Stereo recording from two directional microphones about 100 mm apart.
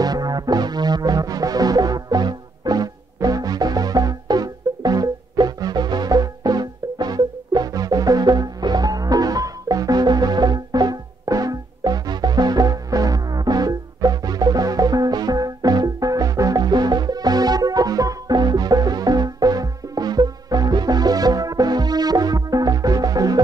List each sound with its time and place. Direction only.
0.0 s music: 40° right (ahead or behind)